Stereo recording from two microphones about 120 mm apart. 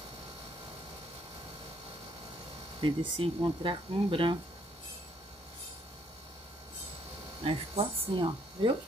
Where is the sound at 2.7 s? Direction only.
45° right (ahead or behind).